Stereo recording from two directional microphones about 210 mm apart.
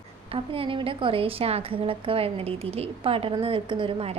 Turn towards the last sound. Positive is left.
turn(degrees=-25)  # may be behind; listen again after turning